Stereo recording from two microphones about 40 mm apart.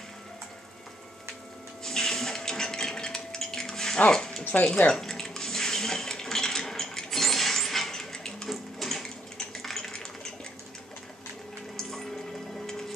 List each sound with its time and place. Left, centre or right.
1.9 s a sound: centre
4.5 s speech: left
4.9 s dishes: centre
8.5 s sewing machine: centre
11.7 s music: centre